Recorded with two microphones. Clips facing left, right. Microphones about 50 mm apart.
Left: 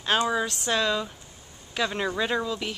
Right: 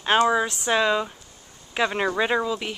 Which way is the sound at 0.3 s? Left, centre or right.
Centre.